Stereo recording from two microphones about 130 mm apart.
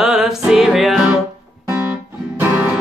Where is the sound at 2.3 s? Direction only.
10° right (ahead or behind).